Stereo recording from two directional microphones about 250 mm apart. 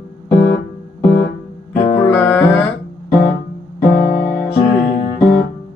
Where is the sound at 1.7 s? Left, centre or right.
Centre.